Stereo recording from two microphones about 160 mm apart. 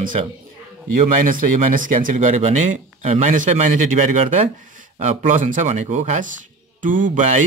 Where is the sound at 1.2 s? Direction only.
60° right (ahead or behind).